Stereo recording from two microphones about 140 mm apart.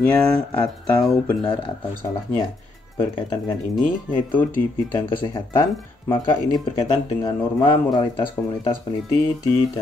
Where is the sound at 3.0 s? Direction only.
30° left (ahead or behind).